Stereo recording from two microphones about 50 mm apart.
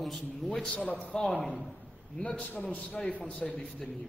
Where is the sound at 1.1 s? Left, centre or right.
Centre.